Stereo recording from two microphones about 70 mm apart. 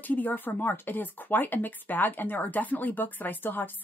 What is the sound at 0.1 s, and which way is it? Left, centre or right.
Speech, left.